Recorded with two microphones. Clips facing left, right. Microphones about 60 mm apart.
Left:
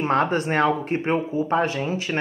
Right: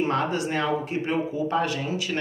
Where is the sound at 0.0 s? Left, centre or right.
Left.